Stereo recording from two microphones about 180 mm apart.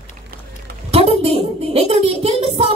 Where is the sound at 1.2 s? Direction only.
35° right (ahead or behind).